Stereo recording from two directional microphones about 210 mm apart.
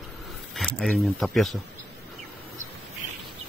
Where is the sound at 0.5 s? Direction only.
Centre (ahead or behind).